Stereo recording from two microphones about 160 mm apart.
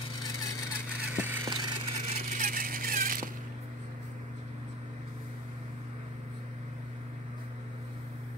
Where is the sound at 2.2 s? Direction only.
60° right (ahead or behind).